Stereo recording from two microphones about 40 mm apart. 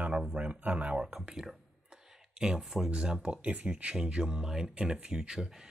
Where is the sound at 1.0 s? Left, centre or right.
Right.